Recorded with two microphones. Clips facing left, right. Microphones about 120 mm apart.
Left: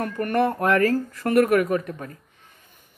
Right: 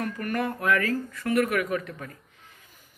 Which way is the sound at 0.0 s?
40° left (ahead or behind).